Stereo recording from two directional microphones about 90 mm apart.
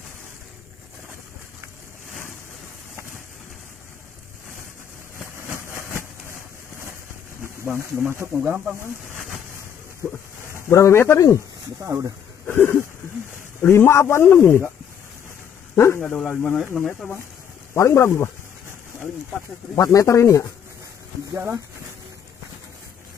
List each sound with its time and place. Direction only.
5.5 s a sound: 30° right (ahead or behind)
7.6 s speech: 25° right (ahead or behind)
10.7 s speech: 30° left (ahead or behind)
11.8 s speech: 30° right (ahead or behind)
12.4 s a sound: 30° left (ahead or behind)
13.6 s speech: 30° left (ahead or behind)
15.7 s speech: 25° left (ahead or behind)
16.7 s speech: 5° left (ahead or behind)
17.7 s speech: 30° left (ahead or behind)
19.7 s speech: 35° left (ahead or behind)